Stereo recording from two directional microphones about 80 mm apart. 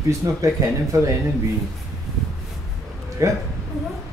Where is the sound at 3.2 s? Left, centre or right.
Right.